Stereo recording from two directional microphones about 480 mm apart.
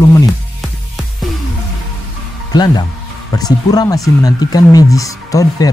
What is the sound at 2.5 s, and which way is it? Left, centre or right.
Speech, centre.